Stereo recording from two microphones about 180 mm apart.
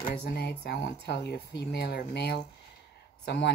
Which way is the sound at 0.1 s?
60° left (ahead or behind).